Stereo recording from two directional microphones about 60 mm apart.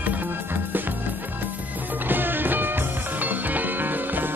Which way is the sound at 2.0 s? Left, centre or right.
Right.